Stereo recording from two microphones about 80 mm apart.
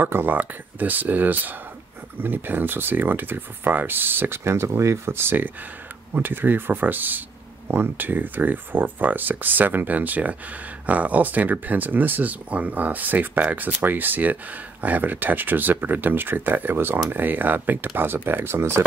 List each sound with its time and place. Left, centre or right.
0.0 s speech: right